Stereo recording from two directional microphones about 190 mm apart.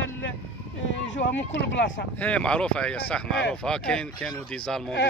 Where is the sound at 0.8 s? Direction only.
70° left (ahead or behind).